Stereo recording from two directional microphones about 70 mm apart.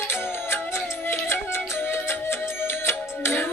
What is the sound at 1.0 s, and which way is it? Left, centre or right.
Music, left.